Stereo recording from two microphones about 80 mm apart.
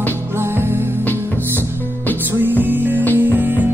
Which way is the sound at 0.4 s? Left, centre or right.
Right.